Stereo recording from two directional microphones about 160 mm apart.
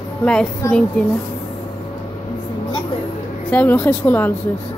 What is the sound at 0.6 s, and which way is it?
Speech, 20° left (ahead or behind).